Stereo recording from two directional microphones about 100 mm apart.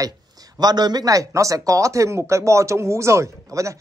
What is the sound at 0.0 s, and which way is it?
Speech, 40° right (ahead or behind).